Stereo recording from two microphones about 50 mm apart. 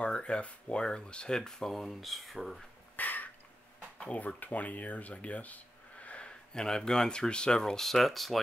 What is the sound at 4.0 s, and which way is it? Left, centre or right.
Speech, left.